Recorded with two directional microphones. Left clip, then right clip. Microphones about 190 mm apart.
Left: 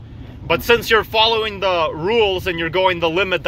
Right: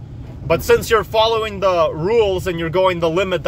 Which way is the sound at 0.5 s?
15° right (ahead or behind).